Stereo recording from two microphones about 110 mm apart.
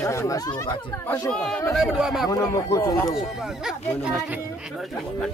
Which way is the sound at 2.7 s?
25° left (ahead or behind).